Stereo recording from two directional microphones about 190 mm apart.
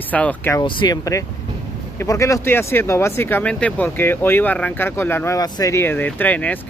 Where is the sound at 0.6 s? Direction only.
25° left (ahead or behind).